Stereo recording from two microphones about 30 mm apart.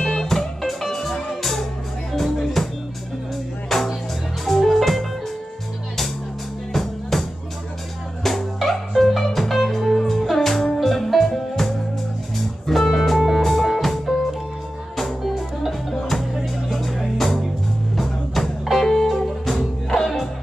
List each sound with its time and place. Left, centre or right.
0.0 s music: left
0.3 s music: centre
6.7 s music: centre